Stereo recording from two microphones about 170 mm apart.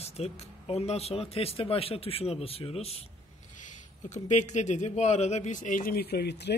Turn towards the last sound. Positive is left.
turn(degrees=80)